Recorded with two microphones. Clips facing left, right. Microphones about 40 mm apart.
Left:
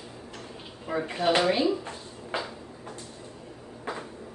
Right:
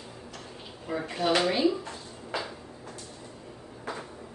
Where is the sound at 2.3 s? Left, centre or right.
Left.